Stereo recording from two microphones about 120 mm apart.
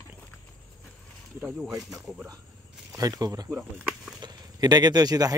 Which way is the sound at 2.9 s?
30° right (ahead or behind).